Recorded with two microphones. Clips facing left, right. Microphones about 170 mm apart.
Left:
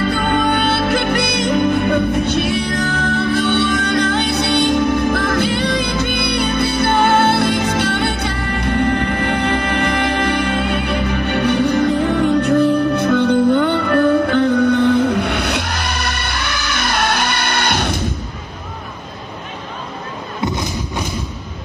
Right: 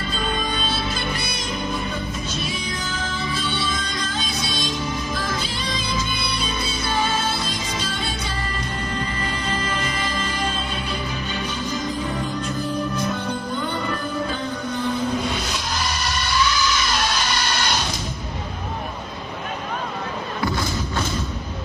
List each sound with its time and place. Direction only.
0.0 s music: 65° left (ahead or behind)
20.4 s thump: 20° left (ahead or behind)